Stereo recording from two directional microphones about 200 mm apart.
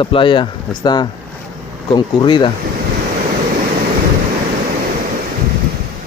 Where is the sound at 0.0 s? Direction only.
25° left (ahead or behind).